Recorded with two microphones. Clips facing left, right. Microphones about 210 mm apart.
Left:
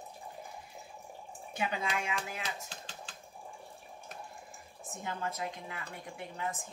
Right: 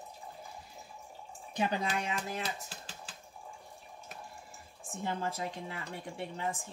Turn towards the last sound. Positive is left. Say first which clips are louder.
# right 2 dB
turn(degrees=-30)  # may be behind; listen again after turning